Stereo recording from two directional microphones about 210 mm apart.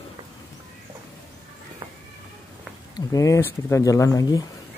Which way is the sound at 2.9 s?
15° left (ahead or behind).